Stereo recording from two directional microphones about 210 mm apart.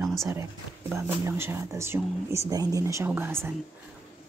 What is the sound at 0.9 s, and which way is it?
Speech, 10° right (ahead or behind).